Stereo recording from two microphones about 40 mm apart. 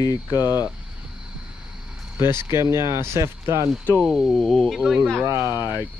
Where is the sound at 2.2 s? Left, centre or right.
Right.